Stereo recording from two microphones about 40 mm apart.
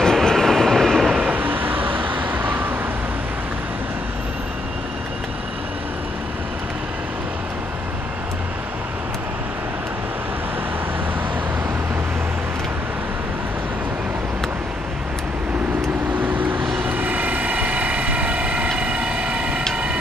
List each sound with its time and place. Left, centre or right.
0.0 s train: centre
1.2 s vehicle: right
16.2 s vehicle: right
18.8 s train: right
19.7 s a sound: right